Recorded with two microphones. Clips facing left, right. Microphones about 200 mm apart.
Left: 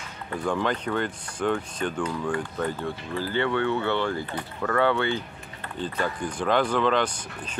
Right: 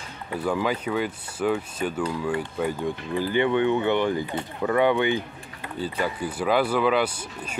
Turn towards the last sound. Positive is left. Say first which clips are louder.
# right 2 dB
turn(degrees=-10)  # may be behind; listen again after turning